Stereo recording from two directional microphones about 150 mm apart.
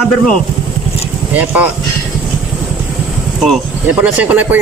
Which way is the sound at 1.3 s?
10° right (ahead or behind).